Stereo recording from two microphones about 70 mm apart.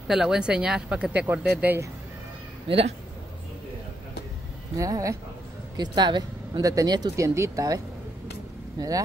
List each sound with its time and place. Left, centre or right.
0.1 s speech: centre
4.7 s speech: right
5.8 s speech: right
6.6 s speech: right
7.2 s speech: right